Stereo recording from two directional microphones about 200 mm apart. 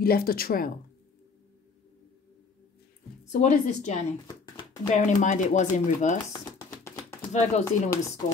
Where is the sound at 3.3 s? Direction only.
40° left (ahead or behind).